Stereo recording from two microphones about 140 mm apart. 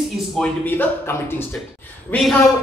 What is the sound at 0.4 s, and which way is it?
A woman's voice, 15° left (ahead or behind).